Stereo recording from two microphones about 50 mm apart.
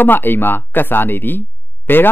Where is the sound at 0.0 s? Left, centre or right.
Left.